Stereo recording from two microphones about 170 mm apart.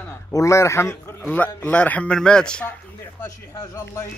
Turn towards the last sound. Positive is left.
turn(degrees=15)  # may be behind; listen again after turning